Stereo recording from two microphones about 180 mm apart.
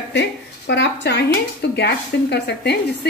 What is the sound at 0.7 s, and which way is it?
A woman's voice, 70° left (ahead or behind).